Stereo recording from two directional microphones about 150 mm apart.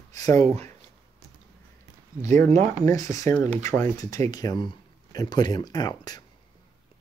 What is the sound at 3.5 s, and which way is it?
Speech, 15° left (ahead or behind).